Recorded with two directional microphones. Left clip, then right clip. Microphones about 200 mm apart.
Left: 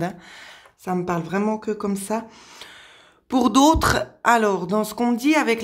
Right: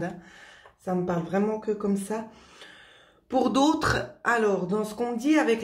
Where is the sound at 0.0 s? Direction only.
40° left (ahead or behind).